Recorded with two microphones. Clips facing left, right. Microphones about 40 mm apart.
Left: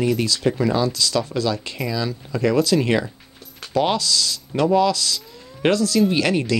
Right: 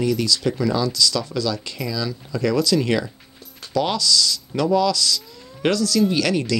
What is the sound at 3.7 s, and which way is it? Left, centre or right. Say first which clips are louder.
Speech: left 1 dB; left.